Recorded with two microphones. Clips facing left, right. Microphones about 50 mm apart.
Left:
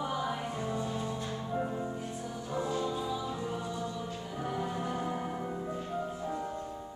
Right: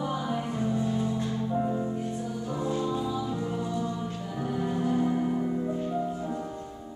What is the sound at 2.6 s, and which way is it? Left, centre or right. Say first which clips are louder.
Music: right 5 dB; centre.